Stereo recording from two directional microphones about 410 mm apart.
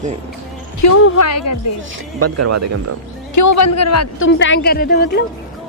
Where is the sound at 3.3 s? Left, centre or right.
Left.